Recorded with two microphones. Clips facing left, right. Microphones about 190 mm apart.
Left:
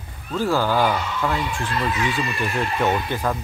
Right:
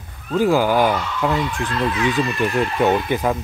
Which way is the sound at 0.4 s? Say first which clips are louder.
Right 4 dB; 15° right (ahead or behind).